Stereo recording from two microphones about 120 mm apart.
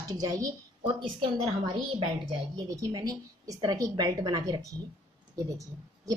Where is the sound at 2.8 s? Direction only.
30° right (ahead or behind).